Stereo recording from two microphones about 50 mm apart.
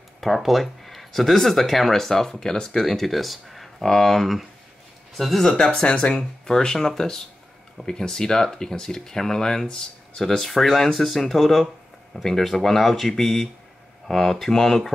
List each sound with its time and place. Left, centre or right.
0.2 s speech: centre
5.7 s speech: left
6.1 s speech: centre